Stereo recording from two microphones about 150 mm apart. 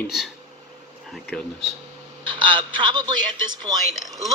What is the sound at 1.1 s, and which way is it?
Speech, 5° left (ahead or behind).